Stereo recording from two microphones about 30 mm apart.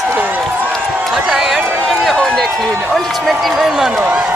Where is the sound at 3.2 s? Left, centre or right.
Centre.